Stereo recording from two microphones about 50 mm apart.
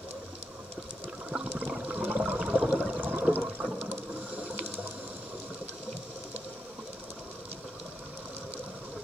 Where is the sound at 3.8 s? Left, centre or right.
Right.